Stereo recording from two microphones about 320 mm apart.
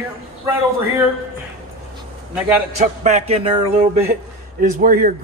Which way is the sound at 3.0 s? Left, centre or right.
Right.